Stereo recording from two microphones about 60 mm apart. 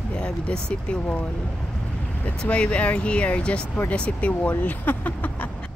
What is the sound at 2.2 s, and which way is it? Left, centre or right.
Speech, left.